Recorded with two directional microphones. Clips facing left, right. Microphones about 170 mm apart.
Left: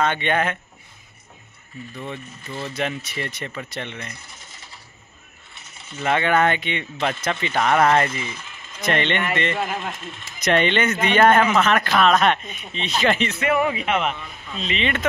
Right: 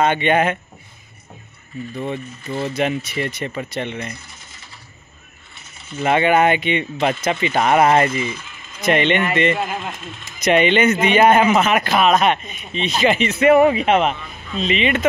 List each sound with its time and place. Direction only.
0.0 s speech: 15° right (ahead or behind)
2.7 s speech: 10° right (ahead or behind)
5.9 s speech: 10° right (ahead or behind)
13.4 s speech: 25° right (ahead or behind)
14.6 s speech: 10° right (ahead or behind)